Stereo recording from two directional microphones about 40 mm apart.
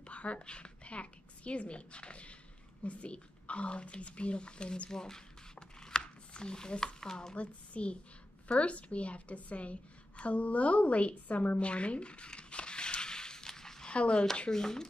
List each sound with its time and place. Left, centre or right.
0.0 s a woman's voice: left; by 5.2 s centre
5.8 s a sound: centre
7.3 s a woman's voice: left; by 13.8 s centre
13.8 s speech: left
14.5 s speech: centre